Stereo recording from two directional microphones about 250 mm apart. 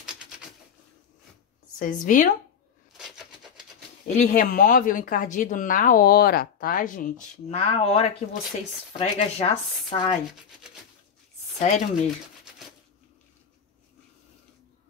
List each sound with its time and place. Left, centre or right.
1.8 s speech: left
3.0 s a sound: centre
4.1 s speech: left
11.5 s speech: left